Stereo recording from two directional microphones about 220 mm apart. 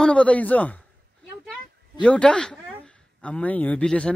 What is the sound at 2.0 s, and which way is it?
A woman's voice, 5° left (ahead or behind).